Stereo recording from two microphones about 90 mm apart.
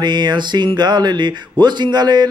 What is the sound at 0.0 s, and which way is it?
Speech, 55° right (ahead or behind).